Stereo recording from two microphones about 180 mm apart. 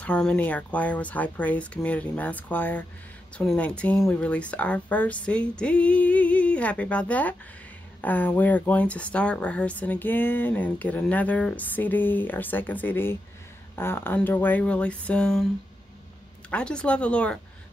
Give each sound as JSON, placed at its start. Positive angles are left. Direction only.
{"t": 0.0, "sound": "speech", "side_deg": 5}
{"t": 16.4, "sound": "speech", "side_deg": 5}